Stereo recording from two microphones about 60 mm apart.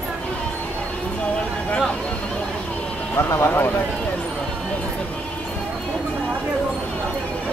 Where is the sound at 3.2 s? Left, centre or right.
Left.